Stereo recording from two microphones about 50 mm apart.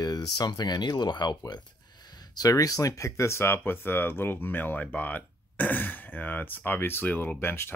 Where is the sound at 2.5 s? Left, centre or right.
Left.